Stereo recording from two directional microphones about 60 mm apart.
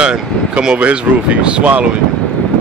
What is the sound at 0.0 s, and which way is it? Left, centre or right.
Speech, centre.